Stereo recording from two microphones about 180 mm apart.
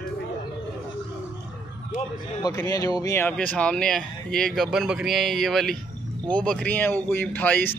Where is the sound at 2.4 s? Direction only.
20° left (ahead or behind).